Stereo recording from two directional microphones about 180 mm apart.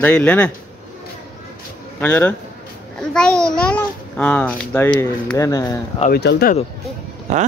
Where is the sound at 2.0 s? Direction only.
10° left (ahead or behind).